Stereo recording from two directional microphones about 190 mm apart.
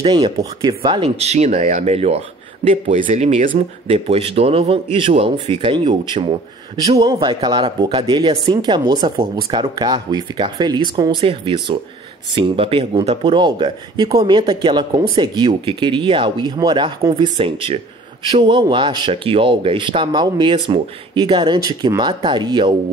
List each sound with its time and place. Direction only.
0.0 s speech: 25° right (ahead or behind)